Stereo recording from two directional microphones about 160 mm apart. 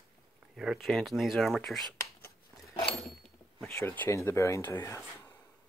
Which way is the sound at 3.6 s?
10° left (ahead or behind).